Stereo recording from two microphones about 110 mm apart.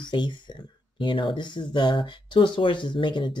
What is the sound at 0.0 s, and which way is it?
Speech, 45° left (ahead or behind).